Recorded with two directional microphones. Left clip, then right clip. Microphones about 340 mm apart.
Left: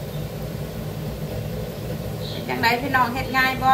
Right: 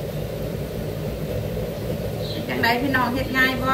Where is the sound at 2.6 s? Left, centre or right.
Left.